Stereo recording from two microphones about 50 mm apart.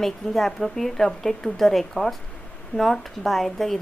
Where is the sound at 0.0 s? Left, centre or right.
Centre.